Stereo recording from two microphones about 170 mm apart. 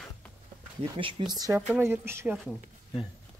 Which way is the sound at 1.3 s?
20° right (ahead or behind).